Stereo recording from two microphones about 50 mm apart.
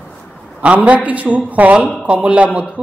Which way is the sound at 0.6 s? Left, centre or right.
Right.